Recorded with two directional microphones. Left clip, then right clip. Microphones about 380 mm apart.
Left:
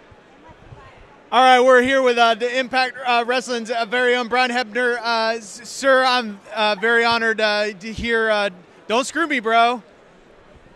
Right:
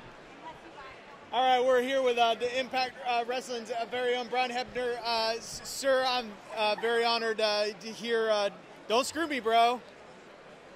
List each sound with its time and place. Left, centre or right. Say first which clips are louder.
1.3 s a man's voice: left 13 dB; left